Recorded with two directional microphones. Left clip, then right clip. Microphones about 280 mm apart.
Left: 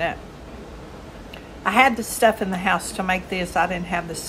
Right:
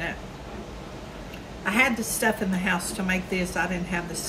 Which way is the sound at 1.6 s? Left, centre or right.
Centre.